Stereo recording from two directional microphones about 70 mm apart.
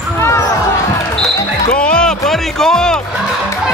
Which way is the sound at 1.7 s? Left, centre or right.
Centre.